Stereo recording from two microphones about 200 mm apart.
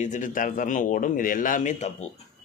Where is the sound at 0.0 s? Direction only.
40° left (ahead or behind).